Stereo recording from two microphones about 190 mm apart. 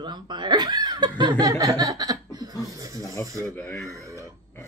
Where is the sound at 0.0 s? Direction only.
25° right (ahead or behind).